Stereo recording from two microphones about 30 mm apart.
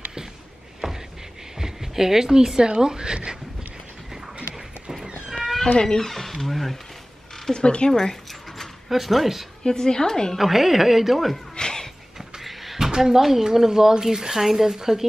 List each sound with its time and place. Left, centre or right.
0.8 s a sound: centre
1.6 s speech: centre
4.4 s a sound: right
5.8 s a woman's voice: left
6.0 s speech: centre
7.5 s speech: left
8.8 s speech: centre
9.6 s a woman's voice: left
10.3 s speech: centre
11.5 s music: left
12.7 s speech: centre